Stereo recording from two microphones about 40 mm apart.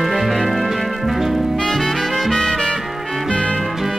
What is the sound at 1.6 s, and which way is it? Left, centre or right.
Music, centre.